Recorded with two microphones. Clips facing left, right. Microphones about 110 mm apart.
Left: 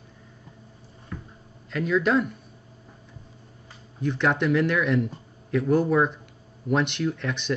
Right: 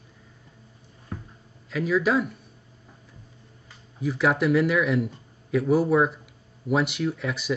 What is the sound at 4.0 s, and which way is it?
Speech, 5° right (ahead or behind).